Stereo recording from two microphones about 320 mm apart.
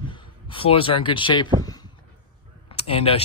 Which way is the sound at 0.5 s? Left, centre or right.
Centre.